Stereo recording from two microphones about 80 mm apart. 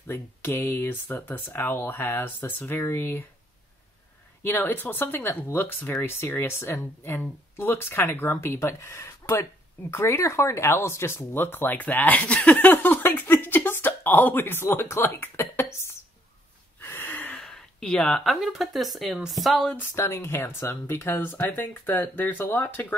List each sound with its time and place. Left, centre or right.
0.0 s speech: left
4.4 s speech: left
16.8 s gasp: left
17.3 s a sound: centre
18.3 s speech: centre
19.8 s speech: left